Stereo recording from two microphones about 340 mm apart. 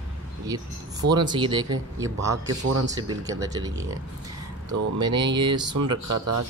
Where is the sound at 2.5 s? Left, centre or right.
Right.